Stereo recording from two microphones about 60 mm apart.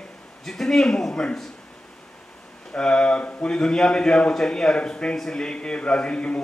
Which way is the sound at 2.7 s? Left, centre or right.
Centre.